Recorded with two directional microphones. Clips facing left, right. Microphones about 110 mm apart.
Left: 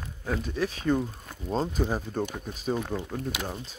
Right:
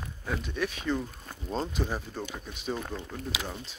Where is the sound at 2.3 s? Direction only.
40° left (ahead or behind).